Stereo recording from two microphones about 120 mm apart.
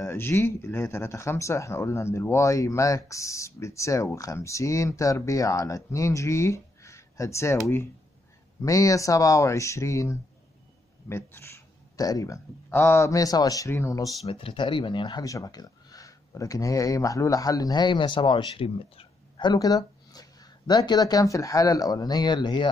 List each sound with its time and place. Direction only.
0.0 s speech: 20° left (ahead or behind)
8.6 s speech: 30° left (ahead or behind)
12.6 s speech: 20° left (ahead or behind)
14.2 s speech: 50° left (ahead or behind)